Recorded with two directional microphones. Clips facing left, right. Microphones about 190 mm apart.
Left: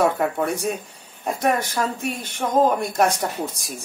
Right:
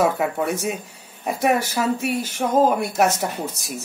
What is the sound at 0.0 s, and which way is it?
A woman's voice, 5° right (ahead or behind).